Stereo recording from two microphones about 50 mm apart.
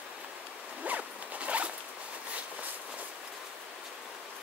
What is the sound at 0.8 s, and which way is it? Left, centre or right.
Zipper, right.